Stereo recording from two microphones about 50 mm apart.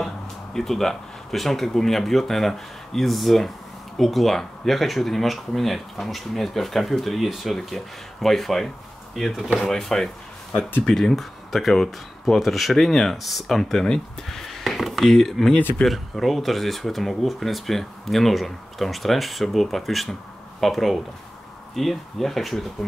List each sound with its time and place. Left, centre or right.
0.6 s speech: centre